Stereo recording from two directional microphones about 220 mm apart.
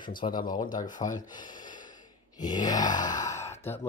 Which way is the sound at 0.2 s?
25° left (ahead or behind).